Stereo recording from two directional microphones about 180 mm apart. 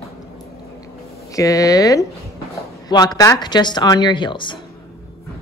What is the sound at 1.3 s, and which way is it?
Speech, 20° left (ahead or behind).